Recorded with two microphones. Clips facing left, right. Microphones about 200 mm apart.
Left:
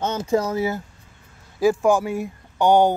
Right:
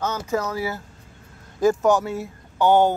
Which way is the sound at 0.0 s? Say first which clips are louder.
Left 3 dB; 30° left (ahead or behind).